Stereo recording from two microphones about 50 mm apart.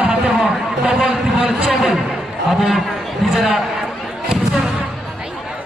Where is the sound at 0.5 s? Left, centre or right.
Centre.